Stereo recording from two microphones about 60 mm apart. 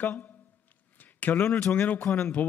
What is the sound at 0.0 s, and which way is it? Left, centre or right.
Speech, left.